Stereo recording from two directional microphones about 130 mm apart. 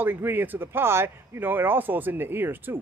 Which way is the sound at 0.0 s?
15° right (ahead or behind).